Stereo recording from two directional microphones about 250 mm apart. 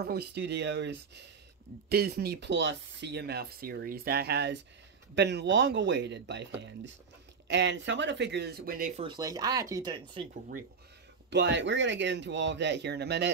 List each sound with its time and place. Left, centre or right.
0.0 s speech: right
9.0 s speech: centre
11.2 s speech: right